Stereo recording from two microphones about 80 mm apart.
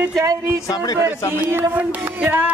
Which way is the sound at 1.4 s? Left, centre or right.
Right.